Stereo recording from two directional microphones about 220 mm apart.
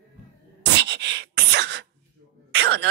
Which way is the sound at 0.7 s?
50° right (ahead or behind).